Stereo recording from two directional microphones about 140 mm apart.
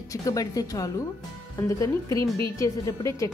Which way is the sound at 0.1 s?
25° left (ahead or behind).